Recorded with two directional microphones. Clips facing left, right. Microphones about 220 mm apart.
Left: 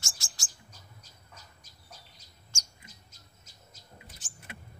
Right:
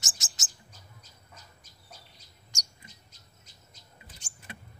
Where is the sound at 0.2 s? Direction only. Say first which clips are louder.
Right 1 dB; 20° right (ahead or behind).